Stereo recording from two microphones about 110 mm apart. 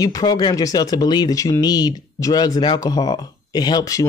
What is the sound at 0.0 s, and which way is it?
Speech, 35° left (ahead or behind).